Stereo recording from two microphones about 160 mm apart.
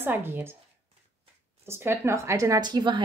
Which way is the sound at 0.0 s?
15° right (ahead or behind).